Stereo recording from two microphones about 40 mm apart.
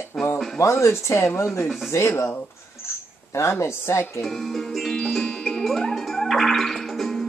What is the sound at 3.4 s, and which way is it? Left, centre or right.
Speech, left.